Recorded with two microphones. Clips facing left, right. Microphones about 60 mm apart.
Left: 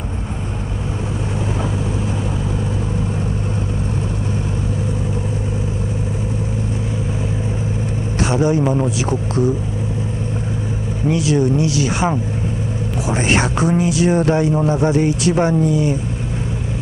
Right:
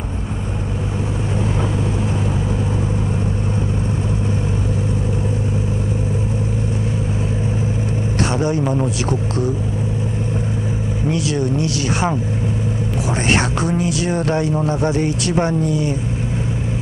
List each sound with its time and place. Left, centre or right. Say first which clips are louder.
8.3 s a man's voice: left 5 dB; centre
11.1 s speech: left 5 dB; left
13.1 s speech: left 1 dB; left